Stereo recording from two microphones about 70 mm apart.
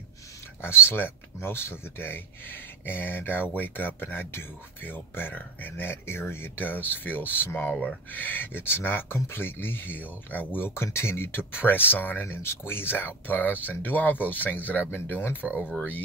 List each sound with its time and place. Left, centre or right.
0.6 s speech: left
7.7 s speech: centre
8.1 s speech: left
15.4 s speech: centre